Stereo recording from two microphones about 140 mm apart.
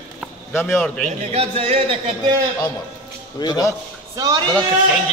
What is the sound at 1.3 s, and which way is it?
Speech, 45° right (ahead or behind).